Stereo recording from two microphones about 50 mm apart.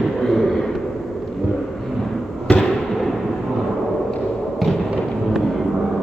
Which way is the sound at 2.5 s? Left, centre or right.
Left.